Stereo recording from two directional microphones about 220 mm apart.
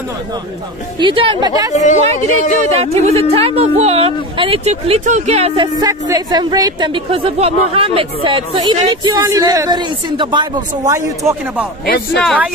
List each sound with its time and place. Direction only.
0.9 s speech: 20° right (ahead or behind)
1.7 s speech: 30° left (ahead or behind)
2.8 s speech: 30° right (ahead or behind); by 11.6 s 10° right (ahead or behind)
11.8 s speech: 45° left (ahead or behind)
12.2 s speech: centre (ahead or behind)